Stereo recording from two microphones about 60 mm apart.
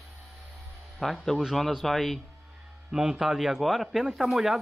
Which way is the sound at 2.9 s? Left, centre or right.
Centre.